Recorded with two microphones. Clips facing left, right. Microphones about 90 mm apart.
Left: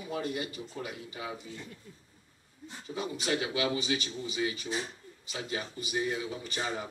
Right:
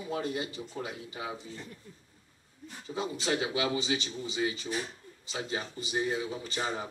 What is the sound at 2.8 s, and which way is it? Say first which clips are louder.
A man's voice: right 1 dB; 30° right (ahead or behind).